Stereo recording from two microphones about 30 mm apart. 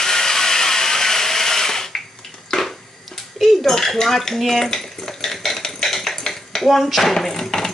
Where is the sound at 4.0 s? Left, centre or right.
Centre.